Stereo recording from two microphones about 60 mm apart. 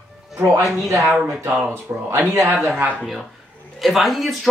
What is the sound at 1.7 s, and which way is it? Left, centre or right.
Speech, right.